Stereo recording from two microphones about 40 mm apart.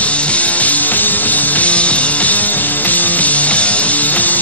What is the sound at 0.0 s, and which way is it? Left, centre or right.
Music, left.